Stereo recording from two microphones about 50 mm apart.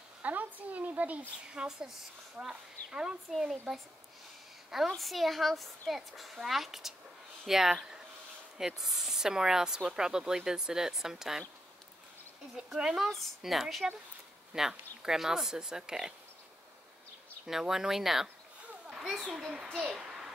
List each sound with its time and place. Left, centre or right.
0.2 s a sound: right
1.5 s speech: centre
3.3 s a child's voice: centre
12.6 s speech: centre
17.5 s speech: centre
20.0 s a sound: centre